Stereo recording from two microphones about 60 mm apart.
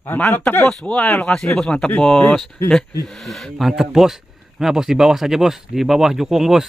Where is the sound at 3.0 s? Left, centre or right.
Centre.